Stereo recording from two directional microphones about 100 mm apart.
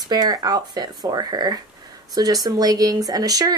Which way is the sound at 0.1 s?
40° right (ahead or behind).